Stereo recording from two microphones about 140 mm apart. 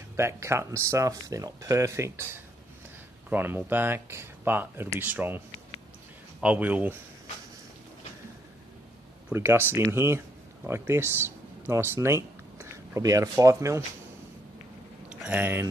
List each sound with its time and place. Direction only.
0.1 s speech: 20° right (ahead or behind)
6.4 s speech: 10° right (ahead or behind)
9.3 s speech: 15° right (ahead or behind)
15.2 s speech: 10° right (ahead or behind)